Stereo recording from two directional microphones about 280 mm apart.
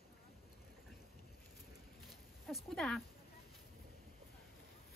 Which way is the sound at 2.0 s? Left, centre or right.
Centre.